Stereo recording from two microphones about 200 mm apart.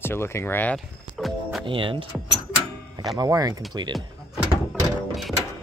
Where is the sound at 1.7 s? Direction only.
25° right (ahead or behind).